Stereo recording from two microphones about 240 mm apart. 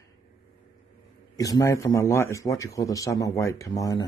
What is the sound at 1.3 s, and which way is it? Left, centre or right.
A man's voice, centre.